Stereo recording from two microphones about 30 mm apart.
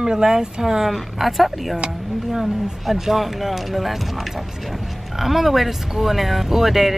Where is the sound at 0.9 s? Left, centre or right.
Centre.